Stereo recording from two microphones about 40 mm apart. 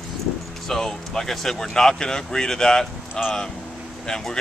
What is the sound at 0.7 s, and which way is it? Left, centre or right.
Speech, centre.